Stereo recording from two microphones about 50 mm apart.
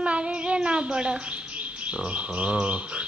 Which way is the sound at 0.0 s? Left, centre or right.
Right.